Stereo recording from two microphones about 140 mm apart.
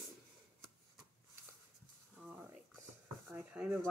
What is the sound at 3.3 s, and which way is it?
Speech, 10° right (ahead or behind).